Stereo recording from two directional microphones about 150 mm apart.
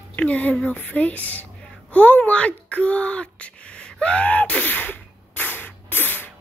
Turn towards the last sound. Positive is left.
turn(degrees=10)  # may be behind; listen again after turning